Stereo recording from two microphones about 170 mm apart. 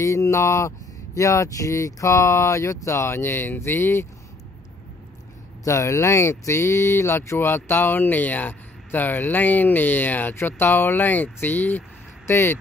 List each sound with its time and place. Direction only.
0.0 s speech: 20° left (ahead or behind)
5.6 s speech: 15° left (ahead or behind)